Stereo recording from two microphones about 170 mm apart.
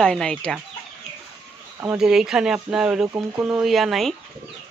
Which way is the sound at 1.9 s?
5° right (ahead or behind).